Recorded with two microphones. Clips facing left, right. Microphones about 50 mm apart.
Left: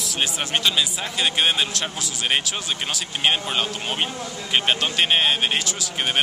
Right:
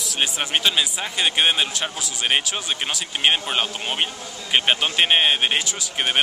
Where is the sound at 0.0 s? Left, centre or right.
Centre.